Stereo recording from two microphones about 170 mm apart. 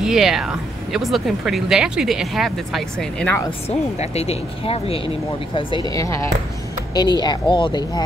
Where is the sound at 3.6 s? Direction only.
35° left (ahead or behind).